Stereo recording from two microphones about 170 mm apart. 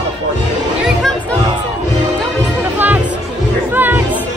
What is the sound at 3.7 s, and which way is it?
Music, 10° right (ahead or behind).